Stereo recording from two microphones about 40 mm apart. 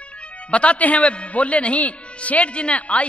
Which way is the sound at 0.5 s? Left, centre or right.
Left.